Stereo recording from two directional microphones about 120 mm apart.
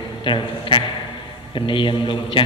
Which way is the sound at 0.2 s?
45° left (ahead or behind).